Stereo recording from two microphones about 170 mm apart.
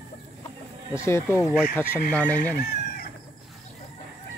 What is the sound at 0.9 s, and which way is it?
Speech, 15° left (ahead or behind).